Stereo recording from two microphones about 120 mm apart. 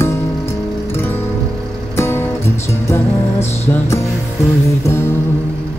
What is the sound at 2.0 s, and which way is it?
Music, 20° left (ahead or behind).